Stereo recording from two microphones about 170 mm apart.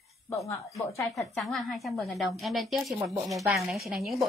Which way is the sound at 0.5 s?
15° left (ahead or behind).